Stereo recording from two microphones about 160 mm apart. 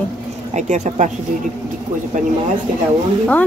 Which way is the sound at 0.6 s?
50° right (ahead or behind).